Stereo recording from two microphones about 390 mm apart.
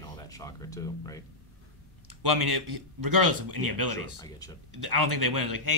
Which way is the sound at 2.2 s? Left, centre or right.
Right.